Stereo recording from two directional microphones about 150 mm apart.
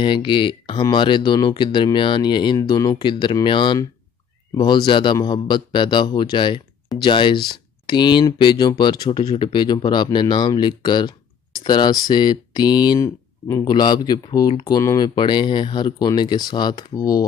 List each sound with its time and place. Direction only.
0.0 s a man's voice: 35° left (ahead or behind)